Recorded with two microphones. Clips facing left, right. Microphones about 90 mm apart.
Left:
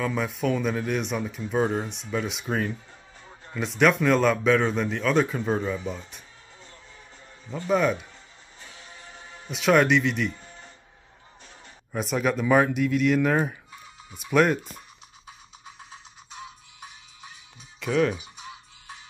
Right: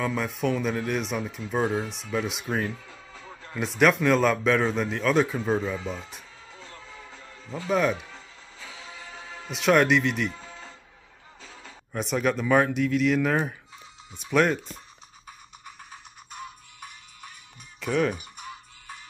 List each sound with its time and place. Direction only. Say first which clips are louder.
0.0 s speech: even; centre (ahead or behind)
2.7 s music: left 1 dB; 90° right
3.5 s speech: even; centre (ahead or behind)
6.6 s music: right 6 dB; 90° right
7.7 s speech: left 1 dB; centre (ahead or behind)
9.5 s speech: left 1 dB; centre (ahead or behind)
11.9 s speech: even; centre (ahead or behind)
16.3 s music: right 2 dB; 55° right (ahead or behind)
17.7 s speech: left 2 dB; centre (ahead or behind)
18.1 s music: even; 55° right (ahead or behind)